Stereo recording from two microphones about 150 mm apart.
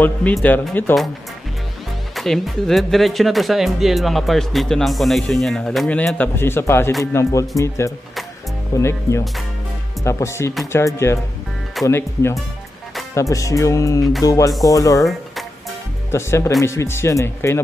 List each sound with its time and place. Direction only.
0.0 s speech: 10° left (ahead or behind)
2.1 s speech: centre (ahead or behind); by 6.9 s 15° left (ahead or behind)
7.1 s music: 20° left (ahead or behind)
10.7 s speech: 15° left (ahead or behind)
13.1 s music: 20° left (ahead or behind)
16.1 s music: 20° left (ahead or behind)
16.6 s speech: 20° left (ahead or behind)